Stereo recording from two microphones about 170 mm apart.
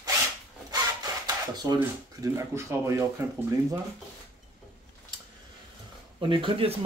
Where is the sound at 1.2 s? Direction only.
25° right (ahead or behind).